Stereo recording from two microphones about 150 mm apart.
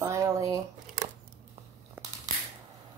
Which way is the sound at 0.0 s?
20° right (ahead or behind).